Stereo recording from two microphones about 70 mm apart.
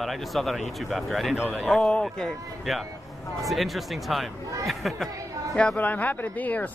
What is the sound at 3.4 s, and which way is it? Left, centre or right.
Speech, centre.